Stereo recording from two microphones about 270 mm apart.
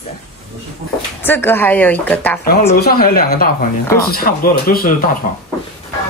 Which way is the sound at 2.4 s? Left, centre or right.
Left.